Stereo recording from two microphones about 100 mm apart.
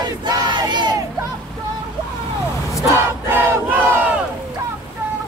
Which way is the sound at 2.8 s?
25° right (ahead or behind).